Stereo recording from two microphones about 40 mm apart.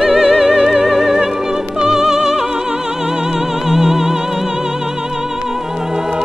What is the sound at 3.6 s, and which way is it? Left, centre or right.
Music, centre.